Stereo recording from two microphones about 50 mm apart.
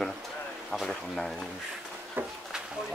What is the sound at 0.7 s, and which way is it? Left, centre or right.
Speech, centre.